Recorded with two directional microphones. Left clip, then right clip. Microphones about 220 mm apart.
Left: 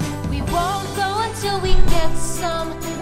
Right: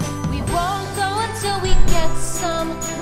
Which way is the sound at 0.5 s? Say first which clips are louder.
Even; centre (ahead or behind).